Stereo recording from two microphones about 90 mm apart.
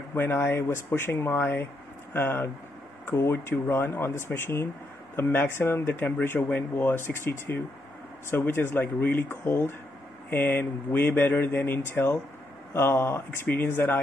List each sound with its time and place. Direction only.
0.1 s speech: 25° left (ahead or behind)